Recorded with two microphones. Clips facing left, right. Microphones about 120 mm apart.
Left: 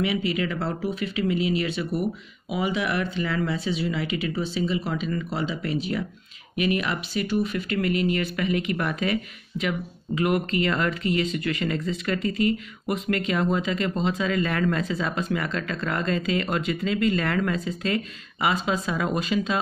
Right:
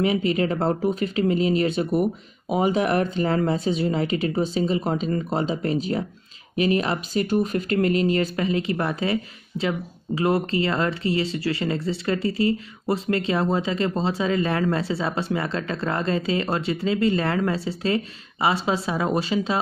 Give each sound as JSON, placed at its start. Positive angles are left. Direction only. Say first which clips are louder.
{"t": 0.0, "sound": "speech", "louder": "right 4 dB", "side_deg": -40}